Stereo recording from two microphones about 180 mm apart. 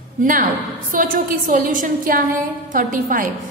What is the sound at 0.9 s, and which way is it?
A woman's voice, 50° right (ahead or behind).